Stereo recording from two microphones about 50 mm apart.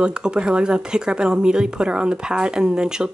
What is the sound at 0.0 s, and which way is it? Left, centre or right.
Speech, centre.